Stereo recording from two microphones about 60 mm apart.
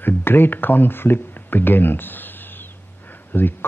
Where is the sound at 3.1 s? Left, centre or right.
Left.